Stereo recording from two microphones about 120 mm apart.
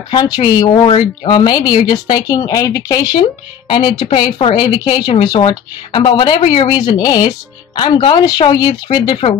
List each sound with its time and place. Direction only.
0.1 s a woman's voice: 35° left (ahead or behind)
4.6 s a woman's voice: 35° left (ahead or behind)